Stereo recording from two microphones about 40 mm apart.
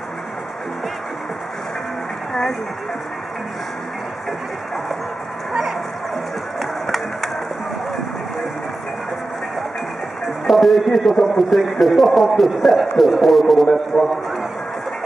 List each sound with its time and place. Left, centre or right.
5.5 s a sound: centre
6.6 s music: centre
10.4 s speech: centre